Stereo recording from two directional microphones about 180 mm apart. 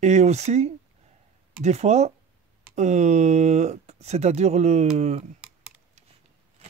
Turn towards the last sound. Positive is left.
turn(degrees=-5)  # may be behind; listen again after turning